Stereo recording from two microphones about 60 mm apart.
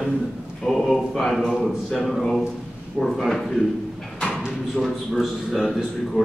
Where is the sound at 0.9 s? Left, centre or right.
Centre.